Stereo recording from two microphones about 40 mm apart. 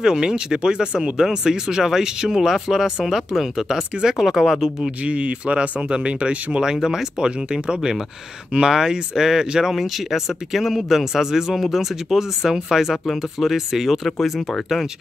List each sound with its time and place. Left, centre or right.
0.0 s speech: centre
5.0 s speech: right
6.6 s speech: centre